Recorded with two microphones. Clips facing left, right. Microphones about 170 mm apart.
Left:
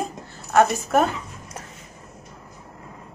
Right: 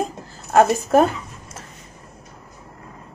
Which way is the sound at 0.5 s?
35° right (ahead or behind).